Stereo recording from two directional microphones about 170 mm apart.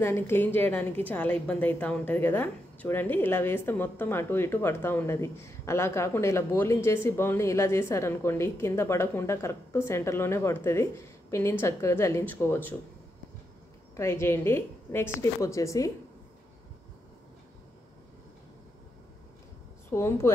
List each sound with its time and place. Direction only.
0.0 s a woman's voice: 15° left (ahead or behind)
13.9 s a woman's voice: 15° left (ahead or behind)
19.9 s a woman's voice: 15° left (ahead or behind)